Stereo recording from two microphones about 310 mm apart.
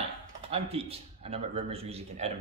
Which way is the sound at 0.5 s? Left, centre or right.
Centre.